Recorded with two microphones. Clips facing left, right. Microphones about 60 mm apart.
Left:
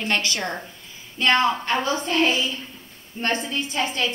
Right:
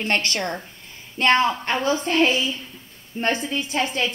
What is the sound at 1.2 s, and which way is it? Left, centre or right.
Speech, right.